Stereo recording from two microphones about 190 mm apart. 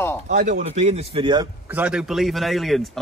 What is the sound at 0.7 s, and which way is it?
Speech, 35° right (ahead or behind).